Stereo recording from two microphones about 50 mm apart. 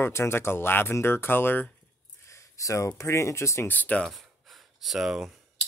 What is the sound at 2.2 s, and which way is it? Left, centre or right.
Speech, left.